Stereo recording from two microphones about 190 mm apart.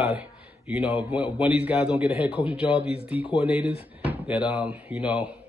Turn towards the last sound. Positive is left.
turn(degrees=-5)  # may be behind; listen again after turning